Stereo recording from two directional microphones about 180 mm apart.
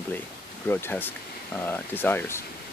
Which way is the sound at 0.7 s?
10° left (ahead or behind).